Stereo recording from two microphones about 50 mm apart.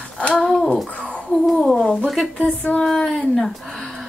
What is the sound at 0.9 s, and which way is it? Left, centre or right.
Gargling, left.